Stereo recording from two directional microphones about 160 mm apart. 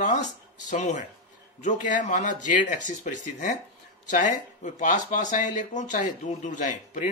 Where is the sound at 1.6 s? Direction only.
50° left (ahead or behind).